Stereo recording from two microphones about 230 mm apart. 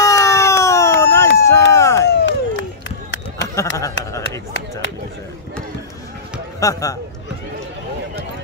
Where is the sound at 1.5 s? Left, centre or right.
Centre.